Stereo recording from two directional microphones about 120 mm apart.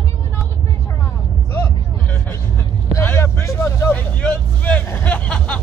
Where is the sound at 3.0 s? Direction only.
20° left (ahead or behind).